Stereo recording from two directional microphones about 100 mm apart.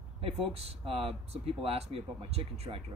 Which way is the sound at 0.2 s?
90° right.